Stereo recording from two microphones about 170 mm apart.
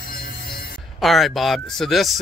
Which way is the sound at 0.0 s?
60° left (ahead or behind).